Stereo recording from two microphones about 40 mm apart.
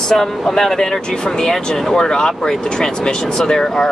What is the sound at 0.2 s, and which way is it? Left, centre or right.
Speech, centre.